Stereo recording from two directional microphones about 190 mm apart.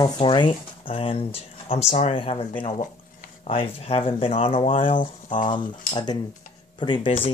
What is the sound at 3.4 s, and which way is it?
Speech, 30° left (ahead or behind).